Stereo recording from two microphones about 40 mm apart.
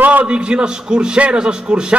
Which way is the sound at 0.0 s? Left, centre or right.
Right.